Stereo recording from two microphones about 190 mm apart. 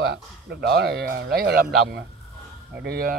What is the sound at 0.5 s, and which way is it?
A man's voice, 60° right (ahead or behind).